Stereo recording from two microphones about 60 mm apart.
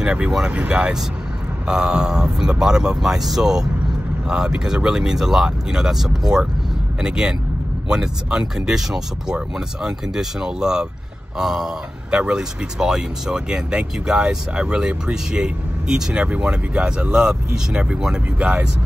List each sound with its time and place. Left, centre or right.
0.0 s speech: centre
0.5 s speech: right